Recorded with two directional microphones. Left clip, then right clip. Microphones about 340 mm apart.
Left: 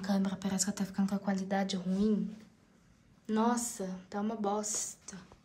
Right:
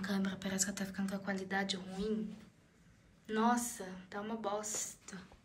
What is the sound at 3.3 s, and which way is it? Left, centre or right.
A woman's voice, centre.